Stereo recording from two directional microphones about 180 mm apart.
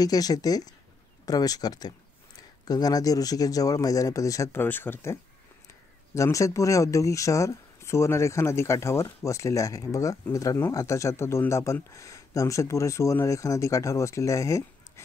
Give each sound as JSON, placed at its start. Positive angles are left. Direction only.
{"t": 0.0, "sound": "speech", "side_deg": 20}